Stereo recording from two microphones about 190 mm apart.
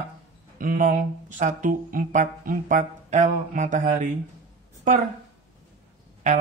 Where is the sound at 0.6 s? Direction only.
45° right (ahead or behind).